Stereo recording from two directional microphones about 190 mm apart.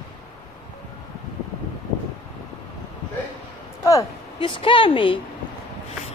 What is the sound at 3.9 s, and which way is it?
A woman's voice, 20° left (ahead or behind).